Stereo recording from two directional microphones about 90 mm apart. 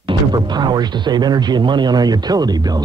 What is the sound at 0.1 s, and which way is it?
Speech, 55° right (ahead or behind).